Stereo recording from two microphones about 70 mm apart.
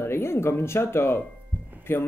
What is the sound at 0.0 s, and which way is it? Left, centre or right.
Speech, left.